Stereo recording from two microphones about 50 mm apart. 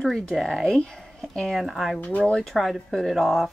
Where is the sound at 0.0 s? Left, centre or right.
Centre.